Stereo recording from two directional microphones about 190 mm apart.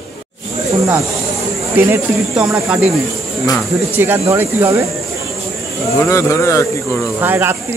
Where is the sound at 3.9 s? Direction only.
10° right (ahead or behind).